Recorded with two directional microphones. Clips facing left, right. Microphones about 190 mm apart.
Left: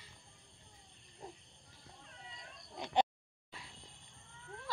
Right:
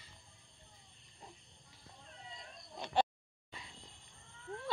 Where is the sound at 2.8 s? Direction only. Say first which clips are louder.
Left 1 dB; 15° left (ahead or behind).